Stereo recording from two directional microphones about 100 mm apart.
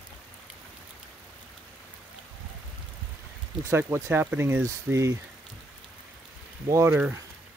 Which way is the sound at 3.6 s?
25° right (ahead or behind).